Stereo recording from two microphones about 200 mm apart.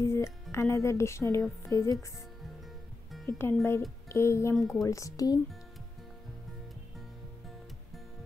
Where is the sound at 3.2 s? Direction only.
10° left (ahead or behind).